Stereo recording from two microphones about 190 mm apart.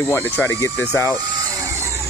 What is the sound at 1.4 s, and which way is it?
Vehicle, 15° right (ahead or behind).